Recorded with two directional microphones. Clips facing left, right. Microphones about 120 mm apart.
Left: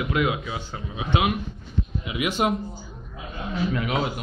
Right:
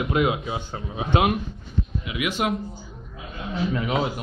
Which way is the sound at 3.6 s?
30° right (ahead or behind).